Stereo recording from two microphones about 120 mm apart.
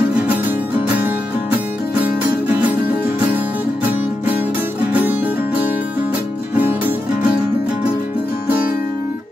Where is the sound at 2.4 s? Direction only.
15° right (ahead or behind).